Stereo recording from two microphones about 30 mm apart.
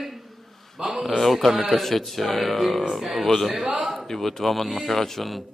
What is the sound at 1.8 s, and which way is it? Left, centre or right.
Speech, centre.